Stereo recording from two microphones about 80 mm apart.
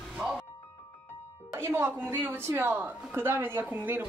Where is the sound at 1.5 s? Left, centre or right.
Right.